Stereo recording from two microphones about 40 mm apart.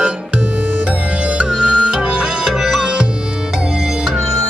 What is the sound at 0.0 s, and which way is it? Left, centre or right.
Music, right.